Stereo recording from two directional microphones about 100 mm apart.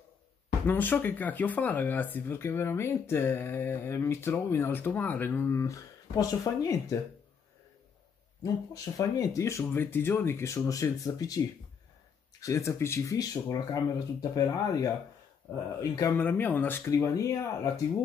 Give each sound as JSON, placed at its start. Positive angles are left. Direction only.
{"t": 0.7, "sound": "speech", "side_deg": 20}
{"t": 8.4, "sound": "speech", "side_deg": 35}
{"t": 15.5, "sound": "speech", "side_deg": 20}
{"t": 15.8, "sound": "speech", "side_deg": 35}
{"t": 16.2, "sound": "speech", "side_deg": 20}